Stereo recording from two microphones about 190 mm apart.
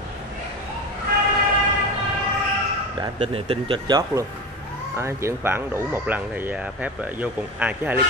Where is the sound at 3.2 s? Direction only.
30° right (ahead or behind).